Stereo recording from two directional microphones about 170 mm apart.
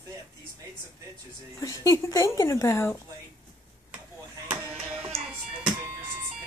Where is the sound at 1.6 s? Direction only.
20° left (ahead or behind).